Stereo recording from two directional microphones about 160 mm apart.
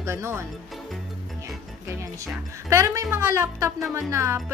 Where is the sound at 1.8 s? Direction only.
20° right (ahead or behind).